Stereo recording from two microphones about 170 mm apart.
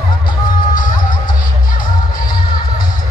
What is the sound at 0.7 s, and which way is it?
Music, 50° left (ahead or behind).